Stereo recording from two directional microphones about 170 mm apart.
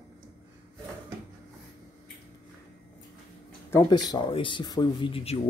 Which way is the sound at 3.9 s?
25° left (ahead or behind).